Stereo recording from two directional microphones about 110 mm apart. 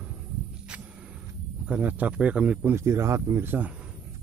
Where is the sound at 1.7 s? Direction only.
15° right (ahead or behind).